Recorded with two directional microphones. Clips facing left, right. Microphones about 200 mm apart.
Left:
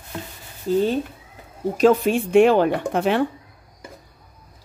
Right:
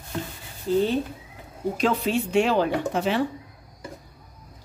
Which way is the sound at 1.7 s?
50° left (ahead or behind).